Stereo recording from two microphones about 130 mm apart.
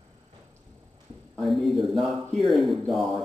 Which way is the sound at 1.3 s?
Centre (ahead or behind).